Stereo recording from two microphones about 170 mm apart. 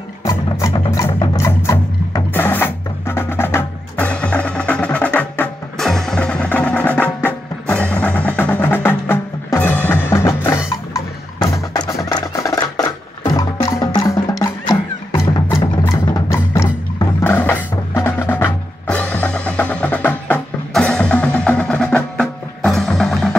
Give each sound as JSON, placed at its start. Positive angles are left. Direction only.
{"t": 0.2, "sound": "music", "side_deg": 20}
{"t": 1.2, "sound": "a sound", "side_deg": 20}
{"t": 10.0, "sound": "percussion", "side_deg": 15}
{"t": 10.9, "sound": "drum", "side_deg": 20}
{"t": 11.7, "sound": "music", "side_deg": 25}